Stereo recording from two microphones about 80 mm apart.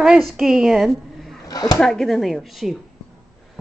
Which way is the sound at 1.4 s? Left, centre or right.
Left.